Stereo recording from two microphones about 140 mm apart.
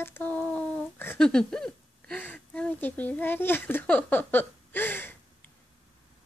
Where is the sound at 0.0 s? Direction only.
15° left (ahead or behind).